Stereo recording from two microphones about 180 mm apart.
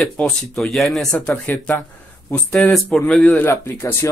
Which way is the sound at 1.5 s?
10° left (ahead or behind).